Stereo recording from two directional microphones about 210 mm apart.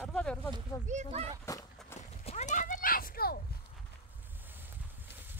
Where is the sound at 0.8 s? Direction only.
35° right (ahead or behind).